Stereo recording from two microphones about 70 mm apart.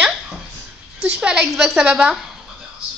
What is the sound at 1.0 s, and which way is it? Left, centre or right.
A woman's voice, centre.